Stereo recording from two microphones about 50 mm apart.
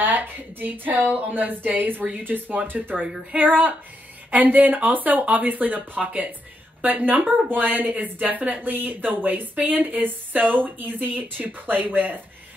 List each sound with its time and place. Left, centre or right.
0.0 s speech: right